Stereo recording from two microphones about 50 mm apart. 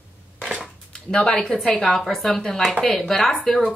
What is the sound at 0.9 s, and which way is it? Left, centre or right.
Speech, centre.